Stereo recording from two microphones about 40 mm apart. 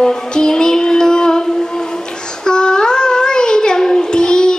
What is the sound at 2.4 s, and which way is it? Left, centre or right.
Child singing, centre.